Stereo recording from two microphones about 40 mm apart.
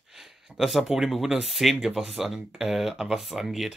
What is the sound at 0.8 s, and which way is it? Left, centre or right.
Speech, centre.